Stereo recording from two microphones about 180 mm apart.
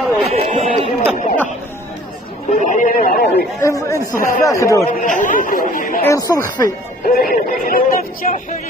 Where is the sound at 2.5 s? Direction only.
45° left (ahead or behind).